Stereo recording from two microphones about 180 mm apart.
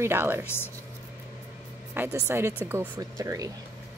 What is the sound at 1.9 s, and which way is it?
Speech, 15° right (ahead or behind).